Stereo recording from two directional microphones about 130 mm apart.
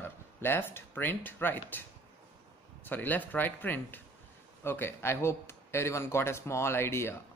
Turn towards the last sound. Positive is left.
turn(degrees=20)  # may be behind; listen again after turning